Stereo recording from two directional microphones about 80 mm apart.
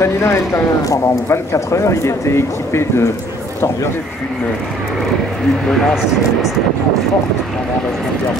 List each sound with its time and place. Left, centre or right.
0.0 s speech: left
5.7 s speech: centre